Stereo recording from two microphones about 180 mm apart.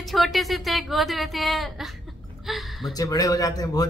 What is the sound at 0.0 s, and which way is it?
Speech, centre (ahead or behind).